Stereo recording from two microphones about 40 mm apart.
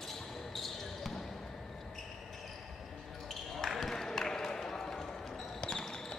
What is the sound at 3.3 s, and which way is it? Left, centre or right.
Basketball bounce, centre.